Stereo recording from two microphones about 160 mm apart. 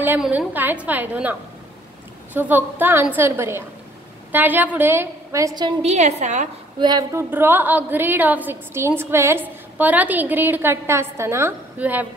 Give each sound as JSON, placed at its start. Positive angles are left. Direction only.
{"t": 0.0, "sound": "a woman's voice", "side_deg": -10}
{"t": 2.3, "sound": "a woman's voice", "side_deg": -10}
{"t": 5.8, "sound": "a woman's voice", "side_deg": -45}
{"t": 6.8, "sound": "a woman's voice", "side_deg": -25}